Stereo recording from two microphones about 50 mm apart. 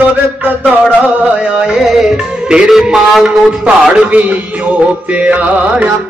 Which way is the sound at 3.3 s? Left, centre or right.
Right.